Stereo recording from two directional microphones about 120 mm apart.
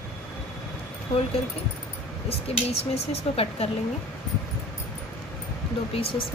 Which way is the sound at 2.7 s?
55° left (ahead or behind).